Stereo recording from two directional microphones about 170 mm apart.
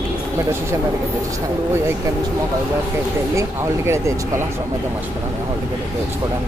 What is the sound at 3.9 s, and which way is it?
Speech, 15° right (ahead or behind).